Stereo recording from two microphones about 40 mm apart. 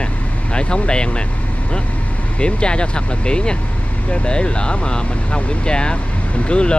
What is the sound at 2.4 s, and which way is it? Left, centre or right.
Speech, left.